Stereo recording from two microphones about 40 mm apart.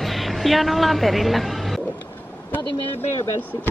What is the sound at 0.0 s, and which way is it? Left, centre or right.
A woman's voice, centre.